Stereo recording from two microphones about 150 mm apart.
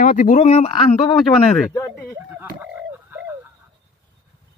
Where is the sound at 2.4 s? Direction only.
10° right (ahead or behind).